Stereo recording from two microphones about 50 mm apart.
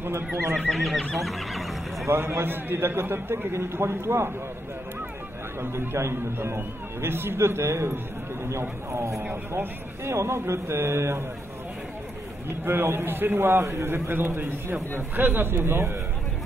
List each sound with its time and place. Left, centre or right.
0.3 s a man's voice: right
0.7 s neigh: centre
2.1 s a man's voice: right
5.6 s a man's voice: right
12.4 s a man's voice: right